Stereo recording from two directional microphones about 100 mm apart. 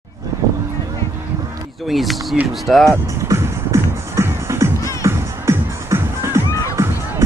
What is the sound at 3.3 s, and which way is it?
Music, 30° right (ahead or behind).